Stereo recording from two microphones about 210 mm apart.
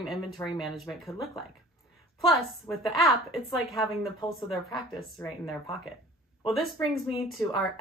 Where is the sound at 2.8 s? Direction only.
Centre (ahead or behind).